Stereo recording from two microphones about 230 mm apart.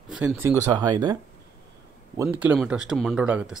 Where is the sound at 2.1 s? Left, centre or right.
Centre.